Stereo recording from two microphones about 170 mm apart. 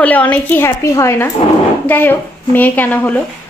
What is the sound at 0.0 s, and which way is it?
A woman's voice, 10° left (ahead or behind).